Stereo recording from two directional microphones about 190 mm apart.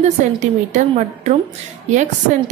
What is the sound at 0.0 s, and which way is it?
A woman's voice, 40° right (ahead or behind).